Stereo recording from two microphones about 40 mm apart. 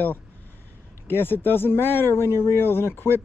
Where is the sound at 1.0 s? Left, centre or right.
Left.